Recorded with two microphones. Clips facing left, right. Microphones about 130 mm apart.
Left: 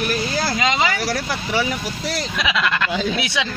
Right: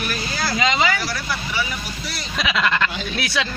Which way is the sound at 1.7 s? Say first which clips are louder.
Left 6 dB; 90° left.